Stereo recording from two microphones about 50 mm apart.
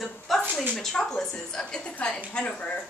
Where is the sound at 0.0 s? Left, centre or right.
Centre.